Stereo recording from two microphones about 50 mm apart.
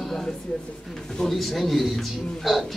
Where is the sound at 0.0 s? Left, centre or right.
Centre.